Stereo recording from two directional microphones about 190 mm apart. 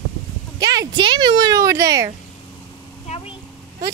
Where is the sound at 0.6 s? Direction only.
20° right (ahead or behind).